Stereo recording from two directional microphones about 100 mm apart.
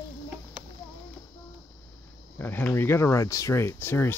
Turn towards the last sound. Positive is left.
turn(degrees=25)  # may be behind; listen again after turning